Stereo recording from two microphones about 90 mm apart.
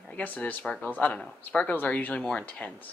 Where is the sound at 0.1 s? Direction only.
15° left (ahead or behind).